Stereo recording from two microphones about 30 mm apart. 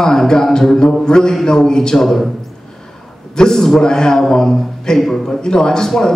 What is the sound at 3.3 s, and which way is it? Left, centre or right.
A man's voice, left.